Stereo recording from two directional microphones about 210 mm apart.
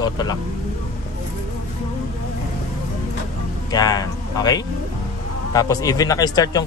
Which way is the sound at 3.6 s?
15° left (ahead or behind).